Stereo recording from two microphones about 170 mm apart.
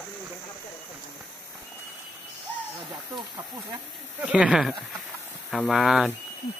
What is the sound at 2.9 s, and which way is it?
Snake, 25° right (ahead or behind).